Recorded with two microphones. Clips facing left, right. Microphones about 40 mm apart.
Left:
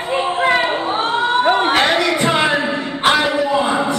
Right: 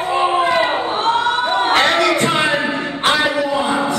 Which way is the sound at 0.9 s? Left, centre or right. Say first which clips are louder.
Right 2 dB; left.